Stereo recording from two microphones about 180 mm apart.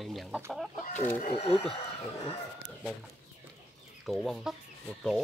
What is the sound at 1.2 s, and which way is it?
Speech, 35° left (ahead or behind).